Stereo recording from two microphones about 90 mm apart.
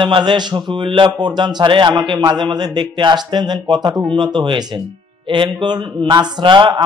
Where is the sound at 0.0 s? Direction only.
60° right (ahead or behind).